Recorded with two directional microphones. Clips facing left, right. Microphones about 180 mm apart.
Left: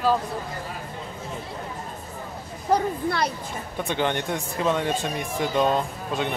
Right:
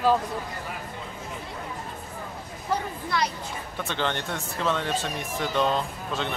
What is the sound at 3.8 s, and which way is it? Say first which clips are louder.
Speech: left 4 dB; 15° left (ahead or behind).